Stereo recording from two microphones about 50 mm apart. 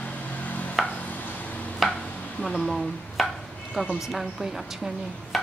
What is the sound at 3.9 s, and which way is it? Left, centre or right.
A woman's voice, centre.